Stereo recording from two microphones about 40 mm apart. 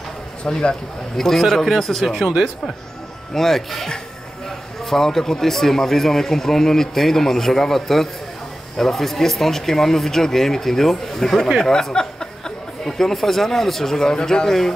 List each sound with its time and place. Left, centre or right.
0.5 s speech: centre
2.1 s speech: centre
3.3 s speech: centre
11.7 s a sound: centre
12.8 s speech: centre